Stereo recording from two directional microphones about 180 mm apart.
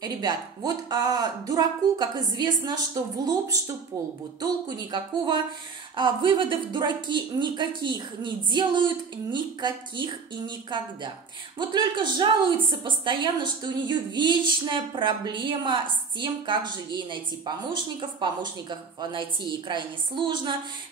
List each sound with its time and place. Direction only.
0.0 s a woman's voice: 20° right (ahead or behind)